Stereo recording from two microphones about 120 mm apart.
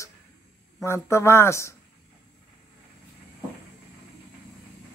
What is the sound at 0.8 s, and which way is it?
Speech, 25° left (ahead or behind).